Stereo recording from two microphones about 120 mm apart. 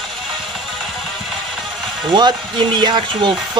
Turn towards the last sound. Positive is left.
turn(degrees=-40)  # may be behind; listen again after turning